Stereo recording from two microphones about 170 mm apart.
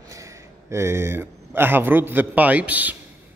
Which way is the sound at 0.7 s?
15° right (ahead or behind).